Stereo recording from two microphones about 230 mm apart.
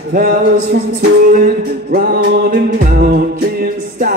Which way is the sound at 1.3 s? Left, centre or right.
Right.